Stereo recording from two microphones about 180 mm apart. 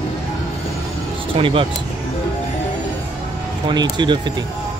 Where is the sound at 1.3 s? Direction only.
30° right (ahead or behind).